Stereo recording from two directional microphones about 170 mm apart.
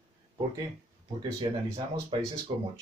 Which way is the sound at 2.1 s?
30° right (ahead or behind).